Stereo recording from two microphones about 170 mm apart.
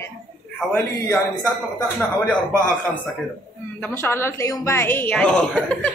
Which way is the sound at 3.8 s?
15° left (ahead or behind).